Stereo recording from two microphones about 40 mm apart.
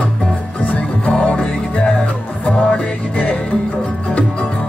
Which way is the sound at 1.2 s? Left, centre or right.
Left.